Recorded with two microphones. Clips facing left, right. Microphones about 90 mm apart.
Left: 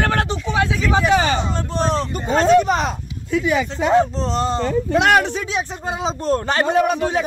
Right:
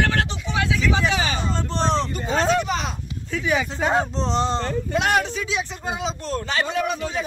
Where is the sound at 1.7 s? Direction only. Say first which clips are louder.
Left 2 dB; 5° left (ahead or behind).